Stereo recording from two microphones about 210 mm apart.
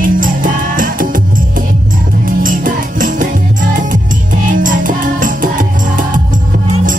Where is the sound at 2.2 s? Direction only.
40° right (ahead or behind).